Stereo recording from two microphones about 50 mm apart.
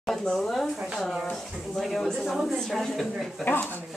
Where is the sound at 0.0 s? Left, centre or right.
Centre.